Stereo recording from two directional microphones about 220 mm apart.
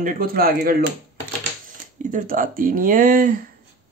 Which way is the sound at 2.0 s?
35° right (ahead or behind).